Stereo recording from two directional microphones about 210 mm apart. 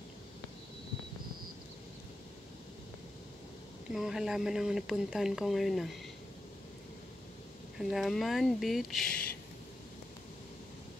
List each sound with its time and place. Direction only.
3.9 s speech: centre (ahead or behind)
7.8 s speech: centre (ahead or behind)